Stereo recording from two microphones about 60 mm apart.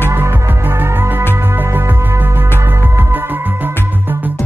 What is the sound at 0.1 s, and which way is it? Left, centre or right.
Music, right.